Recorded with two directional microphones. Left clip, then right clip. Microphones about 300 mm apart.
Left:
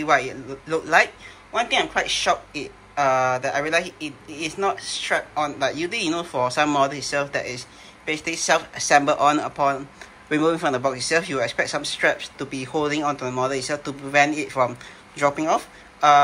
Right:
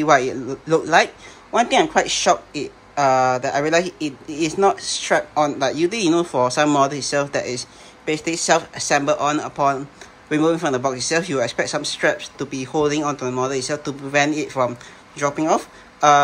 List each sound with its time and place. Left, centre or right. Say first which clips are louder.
0.0 s speech: right 4 dB; centre